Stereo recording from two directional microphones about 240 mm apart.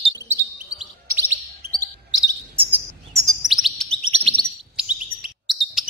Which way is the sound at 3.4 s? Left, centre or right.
Centre.